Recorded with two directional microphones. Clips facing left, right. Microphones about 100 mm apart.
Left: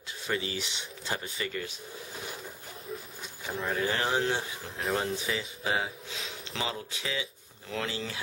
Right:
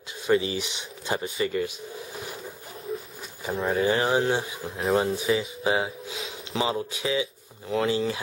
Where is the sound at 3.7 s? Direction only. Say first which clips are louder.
Right 6 dB; 15° right (ahead or behind).